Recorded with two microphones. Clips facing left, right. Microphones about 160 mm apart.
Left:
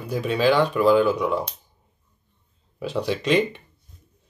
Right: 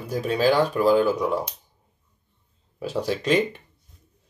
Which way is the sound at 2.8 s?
40° right (ahead or behind).